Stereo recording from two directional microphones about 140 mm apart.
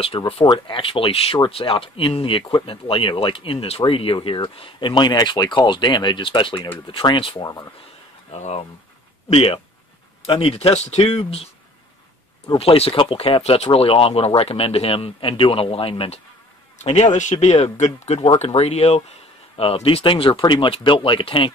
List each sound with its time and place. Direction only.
0.0 s speech: 45° left (ahead or behind)
8.3 s speech: 50° left (ahead or behind)
12.5 s speech: 45° left (ahead or behind)
16.7 s speech: 50° left (ahead or behind)